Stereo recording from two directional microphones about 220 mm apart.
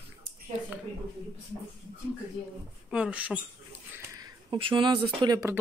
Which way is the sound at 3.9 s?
15° right (ahead or behind).